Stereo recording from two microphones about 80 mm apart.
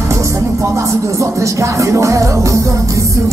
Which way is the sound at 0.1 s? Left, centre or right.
Right.